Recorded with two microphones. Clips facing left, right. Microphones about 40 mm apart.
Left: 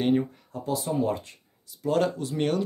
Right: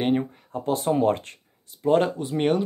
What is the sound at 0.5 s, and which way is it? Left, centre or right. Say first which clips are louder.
Speech: right 5 dB; right.